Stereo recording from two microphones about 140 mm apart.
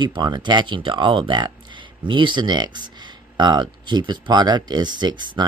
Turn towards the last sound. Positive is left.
turn(degrees=-30)  # may be behind; listen again after turning